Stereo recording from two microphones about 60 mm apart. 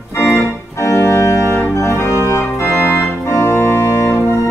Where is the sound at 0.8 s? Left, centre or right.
Left.